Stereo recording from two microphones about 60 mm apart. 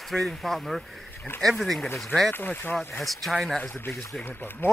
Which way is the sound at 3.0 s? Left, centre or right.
Centre.